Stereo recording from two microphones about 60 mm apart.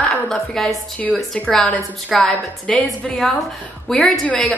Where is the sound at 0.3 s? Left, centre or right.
Centre.